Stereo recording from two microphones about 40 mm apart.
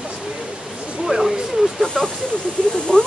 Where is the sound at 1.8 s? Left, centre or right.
Centre.